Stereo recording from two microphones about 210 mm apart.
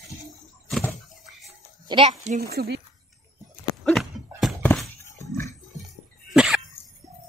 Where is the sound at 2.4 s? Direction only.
45° right (ahead or behind).